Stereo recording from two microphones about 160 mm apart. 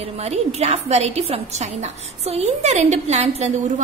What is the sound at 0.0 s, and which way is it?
A woman's voice, 40° right (ahead or behind).